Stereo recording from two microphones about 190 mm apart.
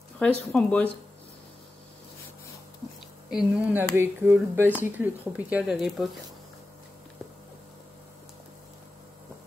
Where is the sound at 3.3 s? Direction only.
5° right (ahead or behind).